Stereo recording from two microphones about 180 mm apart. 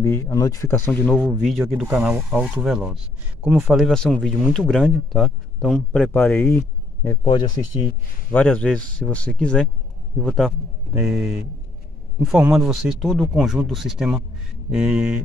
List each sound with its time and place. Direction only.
0.0 s speech: 15° left (ahead or behind)
8.3 s speech: 10° left (ahead or behind)